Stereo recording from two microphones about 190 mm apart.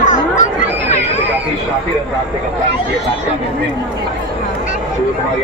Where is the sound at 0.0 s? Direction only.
40° left (ahead or behind).